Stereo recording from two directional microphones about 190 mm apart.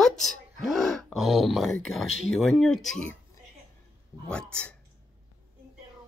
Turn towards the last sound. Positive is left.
turn(degrees=5)  # may be behind; listen again after turning